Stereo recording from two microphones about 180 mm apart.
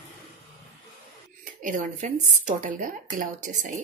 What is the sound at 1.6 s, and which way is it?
Speech, 45° right (ahead or behind).